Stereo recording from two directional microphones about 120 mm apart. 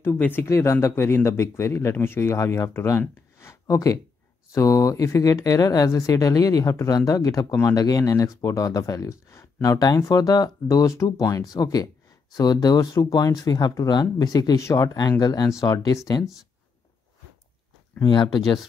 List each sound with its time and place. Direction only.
0.0 s speech: 20° left (ahead or behind)
18.0 s speech: 40° left (ahead or behind)